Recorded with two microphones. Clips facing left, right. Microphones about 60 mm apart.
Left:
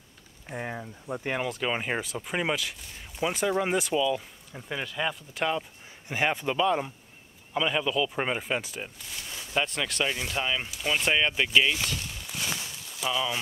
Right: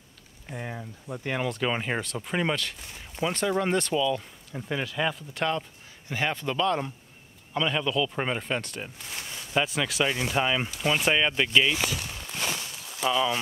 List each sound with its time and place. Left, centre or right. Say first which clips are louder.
0.5 s speech: left 2 dB; centre
6.0 s speech: left 2 dB; centre
13.0 s speech: right 4 dB; centre